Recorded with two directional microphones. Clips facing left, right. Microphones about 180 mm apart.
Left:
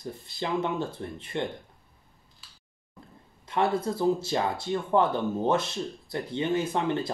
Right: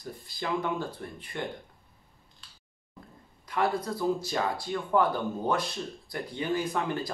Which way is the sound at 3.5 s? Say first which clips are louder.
Left 3 dB; 25° left (ahead or behind).